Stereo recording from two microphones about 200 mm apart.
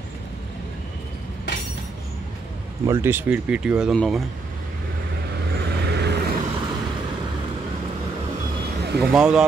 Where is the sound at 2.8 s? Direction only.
15° right (ahead or behind).